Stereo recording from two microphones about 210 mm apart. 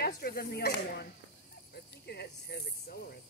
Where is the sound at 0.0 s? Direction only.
50° left (ahead or behind).